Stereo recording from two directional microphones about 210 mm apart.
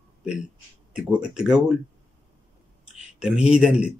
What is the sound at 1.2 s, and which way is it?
Speech, 5° right (ahead or behind).